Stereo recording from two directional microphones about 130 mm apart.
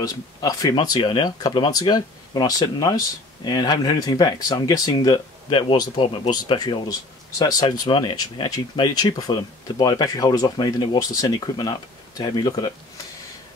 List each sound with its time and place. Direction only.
0.0 s speech: 30° left (ahead or behind)